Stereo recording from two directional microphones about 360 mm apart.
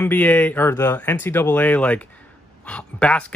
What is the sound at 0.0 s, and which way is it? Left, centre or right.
A man's voice, centre.